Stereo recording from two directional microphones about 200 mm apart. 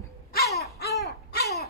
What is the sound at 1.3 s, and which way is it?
Babbling, 55° left (ahead or behind).